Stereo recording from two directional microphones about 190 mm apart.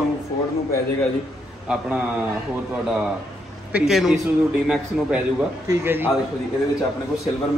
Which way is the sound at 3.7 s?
Centre (ahead or behind).